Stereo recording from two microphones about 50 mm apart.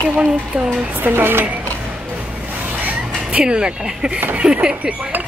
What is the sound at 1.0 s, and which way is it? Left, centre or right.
Speech, right.